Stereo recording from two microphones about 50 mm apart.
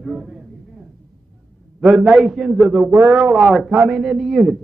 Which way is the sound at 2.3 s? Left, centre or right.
Centre.